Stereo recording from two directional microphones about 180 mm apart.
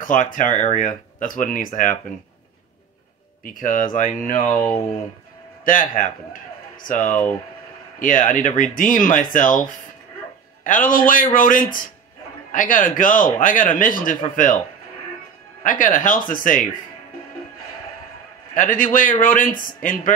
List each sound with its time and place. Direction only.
0.0 s speech: 50° left (ahead or behind)
3.4 s speech: 50° left (ahead or behind)
4.5 s speech: 10° left (ahead or behind)
5.7 s speech: 50° left (ahead or behind)
15.6 s speech: 50° left (ahead or behind)
18.5 s a man's voice: 50° left (ahead or behind)